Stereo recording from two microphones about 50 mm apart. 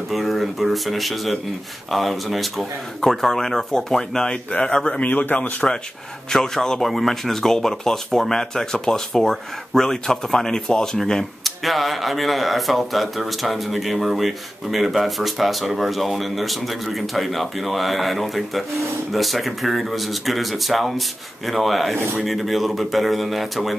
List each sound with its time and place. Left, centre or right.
0.1 s speech: centre
5.0 s speech: left
6.3 s speech: centre
11.4 s speech: centre